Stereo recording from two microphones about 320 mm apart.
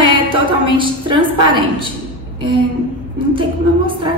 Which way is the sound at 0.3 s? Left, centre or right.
Centre.